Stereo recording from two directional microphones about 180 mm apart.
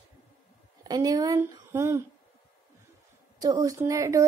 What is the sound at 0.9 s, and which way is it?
A woman's voice, 20° right (ahead or behind).